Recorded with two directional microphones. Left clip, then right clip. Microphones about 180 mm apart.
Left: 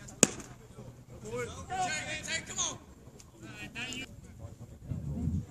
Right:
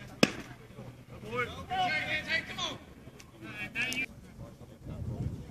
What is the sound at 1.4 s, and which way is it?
Speech, 10° left (ahead or behind).